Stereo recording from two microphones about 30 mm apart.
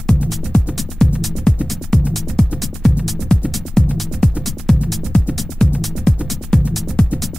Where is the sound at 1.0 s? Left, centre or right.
Centre.